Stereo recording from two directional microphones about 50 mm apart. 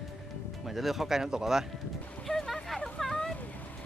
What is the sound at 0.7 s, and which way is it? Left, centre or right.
Speech, centre.